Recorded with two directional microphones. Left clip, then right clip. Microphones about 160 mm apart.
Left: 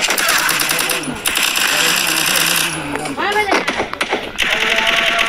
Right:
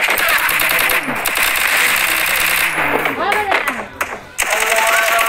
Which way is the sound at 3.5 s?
25° right (ahead or behind).